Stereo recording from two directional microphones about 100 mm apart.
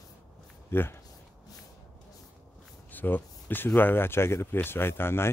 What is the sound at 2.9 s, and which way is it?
Speech, 20° left (ahead or behind).